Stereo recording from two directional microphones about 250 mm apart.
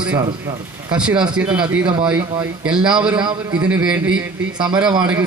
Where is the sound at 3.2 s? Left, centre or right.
Centre.